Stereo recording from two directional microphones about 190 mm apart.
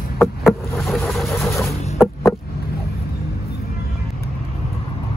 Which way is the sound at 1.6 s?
15° left (ahead or behind).